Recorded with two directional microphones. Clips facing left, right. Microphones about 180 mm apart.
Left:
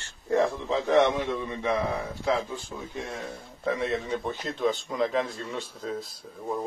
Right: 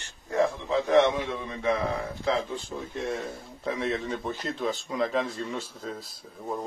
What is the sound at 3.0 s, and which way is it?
Speech, centre (ahead or behind).